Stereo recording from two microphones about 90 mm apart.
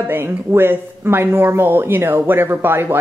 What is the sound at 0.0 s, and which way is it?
Speech, 25° right (ahead or behind).